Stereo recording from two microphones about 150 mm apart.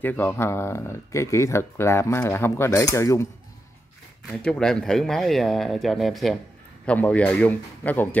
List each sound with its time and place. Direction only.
0.0 s speech: 15° left (ahead or behind)
4.4 s speech: 5° left (ahead or behind)